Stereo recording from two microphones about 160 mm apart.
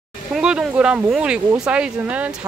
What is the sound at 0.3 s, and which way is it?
Speech, 5° right (ahead or behind).